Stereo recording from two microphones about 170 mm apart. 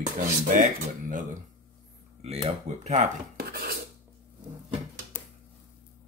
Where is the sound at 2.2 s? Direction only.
35° right (ahead or behind).